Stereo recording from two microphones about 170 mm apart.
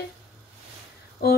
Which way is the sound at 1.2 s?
65° left (ahead or behind).